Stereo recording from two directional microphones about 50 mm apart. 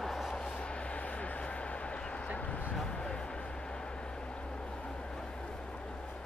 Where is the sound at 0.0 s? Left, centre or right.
Centre.